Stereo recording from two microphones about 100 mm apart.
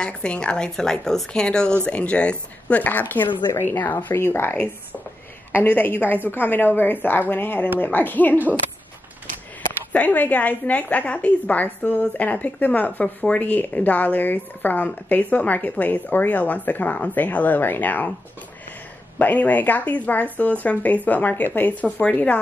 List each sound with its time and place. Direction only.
0.0 s a woman's voice: 10° left (ahead or behind)
9.9 s a woman's voice: 15° left (ahead or behind)
19.1 s a woman's voice: 15° left (ahead or behind)